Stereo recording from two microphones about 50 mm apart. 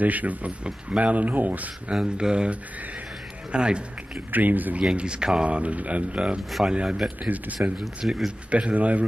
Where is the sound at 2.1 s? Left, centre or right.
Centre.